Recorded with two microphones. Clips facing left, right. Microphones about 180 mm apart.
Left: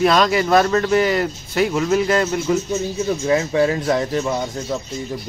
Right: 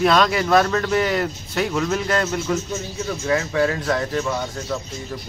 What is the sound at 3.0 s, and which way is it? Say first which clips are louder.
Speech: left 2 dB; 20° left (ahead or behind).